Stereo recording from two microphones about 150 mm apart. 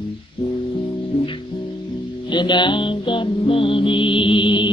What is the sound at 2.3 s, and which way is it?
Music, 30° left (ahead or behind).